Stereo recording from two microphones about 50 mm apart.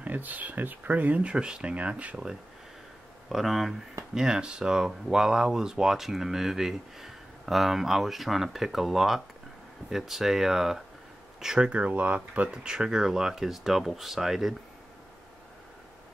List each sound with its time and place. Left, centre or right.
0.0 s speech: right
3.3 s speech: centre
4.1 s speech: centre
11.8 s speech: right
12.4 s speech: centre